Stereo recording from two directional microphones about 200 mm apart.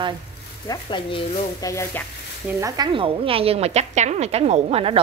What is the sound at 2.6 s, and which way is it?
A woman's voice, 20° right (ahead or behind).